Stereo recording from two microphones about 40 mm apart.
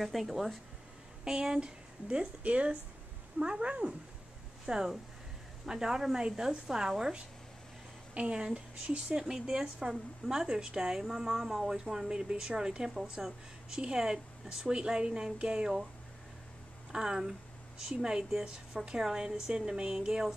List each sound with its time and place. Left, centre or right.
0.0 s speech: centre
1.2 s a woman's voice: centre
2.0 s speech: right
3.3 s a woman's voice: centre
3.6 s a woman's voice: right
4.7 s speech: centre
5.7 s a woman's voice: centre
16.9 s a woman's voice: centre